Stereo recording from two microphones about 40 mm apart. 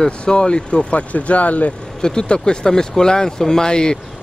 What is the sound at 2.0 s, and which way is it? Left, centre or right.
Speech, centre.